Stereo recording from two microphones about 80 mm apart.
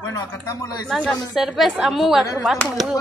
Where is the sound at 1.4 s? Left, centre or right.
Centre.